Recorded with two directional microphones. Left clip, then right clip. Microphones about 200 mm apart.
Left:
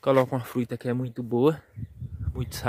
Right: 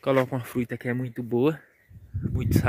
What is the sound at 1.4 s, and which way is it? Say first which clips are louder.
Speech: left 3 dB; 5° left (ahead or behind).